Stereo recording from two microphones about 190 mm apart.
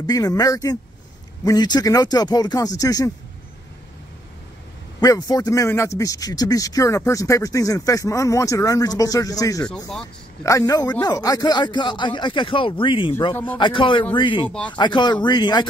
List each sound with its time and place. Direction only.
0.0 s speech: 20° left (ahead or behind)
5.0 s a man's voice: 20° left (ahead or behind)
9.7 s speech: 5° left (ahead or behind)
10.4 s speech: 15° left (ahead or behind)